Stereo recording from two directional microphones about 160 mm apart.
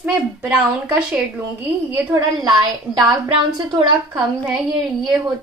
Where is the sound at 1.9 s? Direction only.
20° right (ahead or behind).